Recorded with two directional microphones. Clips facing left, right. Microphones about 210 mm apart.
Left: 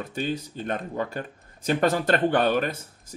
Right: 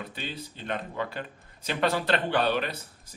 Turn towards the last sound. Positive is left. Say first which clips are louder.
# left 4 dB
turn(degrees=45)  # may be behind; listen again after turning